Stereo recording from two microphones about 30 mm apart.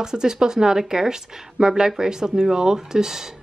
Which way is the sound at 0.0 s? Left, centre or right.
Right.